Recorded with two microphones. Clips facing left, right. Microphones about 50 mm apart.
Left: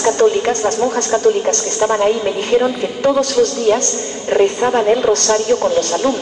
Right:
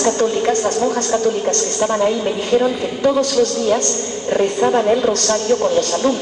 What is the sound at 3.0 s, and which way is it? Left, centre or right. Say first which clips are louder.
Speech: left 1 dB; left.